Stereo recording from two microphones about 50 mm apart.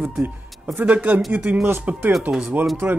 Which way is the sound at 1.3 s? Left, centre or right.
Right.